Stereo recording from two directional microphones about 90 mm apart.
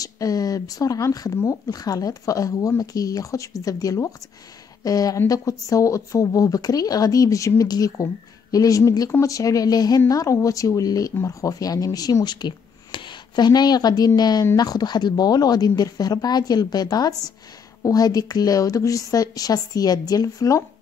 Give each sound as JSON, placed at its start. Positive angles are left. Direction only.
{"t": 0.0, "sound": "speech", "side_deg": 45}